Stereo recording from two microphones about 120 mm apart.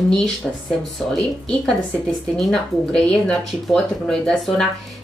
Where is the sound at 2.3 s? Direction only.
5° left (ahead or behind).